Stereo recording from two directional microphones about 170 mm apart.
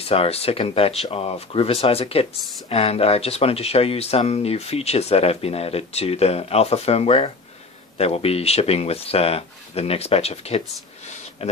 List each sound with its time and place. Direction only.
0.0 s speech: 35° left (ahead or behind)